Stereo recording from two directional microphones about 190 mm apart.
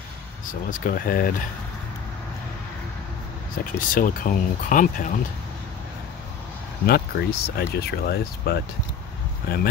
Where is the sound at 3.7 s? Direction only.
45° left (ahead or behind).